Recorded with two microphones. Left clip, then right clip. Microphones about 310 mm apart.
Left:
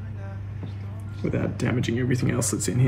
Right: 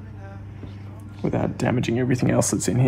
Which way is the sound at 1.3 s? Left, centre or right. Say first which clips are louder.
Right 4 dB; right.